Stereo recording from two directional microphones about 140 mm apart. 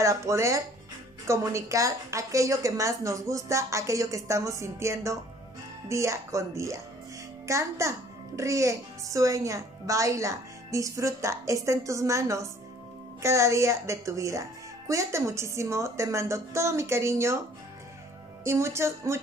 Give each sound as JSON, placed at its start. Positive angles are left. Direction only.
{"t": 0.0, "sound": "speech", "side_deg": -20}
{"t": 18.4, "sound": "speech", "side_deg": -20}